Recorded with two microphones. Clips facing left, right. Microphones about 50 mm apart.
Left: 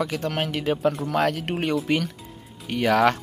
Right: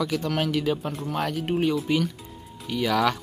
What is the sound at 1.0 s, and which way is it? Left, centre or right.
Speech, left.